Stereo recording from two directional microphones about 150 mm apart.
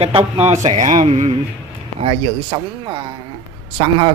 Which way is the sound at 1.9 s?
35° right (ahead or behind).